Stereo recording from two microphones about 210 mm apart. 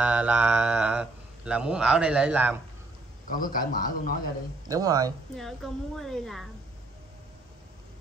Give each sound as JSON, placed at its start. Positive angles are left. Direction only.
{"t": 0.0, "sound": "speech", "side_deg": -5}
{"t": 3.3, "sound": "a man's voice", "side_deg": 40}
{"t": 4.6, "sound": "speech", "side_deg": -15}
{"t": 5.3, "sound": "speech", "side_deg": 0}